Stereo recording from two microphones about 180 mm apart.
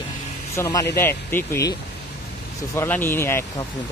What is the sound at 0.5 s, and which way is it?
Speech, 15° left (ahead or behind).